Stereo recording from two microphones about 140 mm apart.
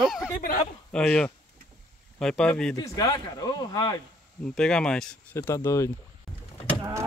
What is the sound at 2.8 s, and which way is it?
Speech, 25° left (ahead or behind).